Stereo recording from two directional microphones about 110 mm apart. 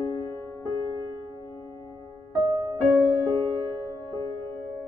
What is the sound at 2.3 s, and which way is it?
Music, 35° right (ahead or behind).